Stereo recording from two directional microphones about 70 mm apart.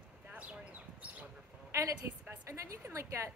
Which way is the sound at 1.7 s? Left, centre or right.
Right.